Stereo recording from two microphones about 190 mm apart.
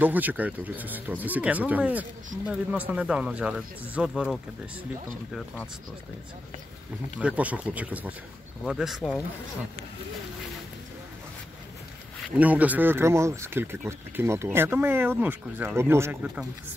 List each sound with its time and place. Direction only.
0.0 s speech: 10° right (ahead or behind)
7.2 s speech: 5° right (ahead or behind)
12.2 s speech: 5° right (ahead or behind)